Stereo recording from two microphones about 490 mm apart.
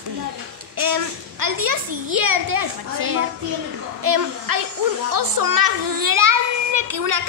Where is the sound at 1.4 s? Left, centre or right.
Right.